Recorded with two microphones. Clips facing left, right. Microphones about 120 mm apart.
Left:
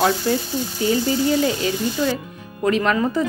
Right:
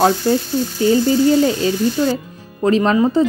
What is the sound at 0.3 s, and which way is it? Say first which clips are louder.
Speech: right 5 dB; 35° right (ahead or behind).